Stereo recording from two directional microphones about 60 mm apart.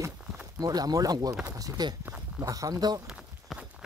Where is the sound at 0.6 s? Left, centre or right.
Right.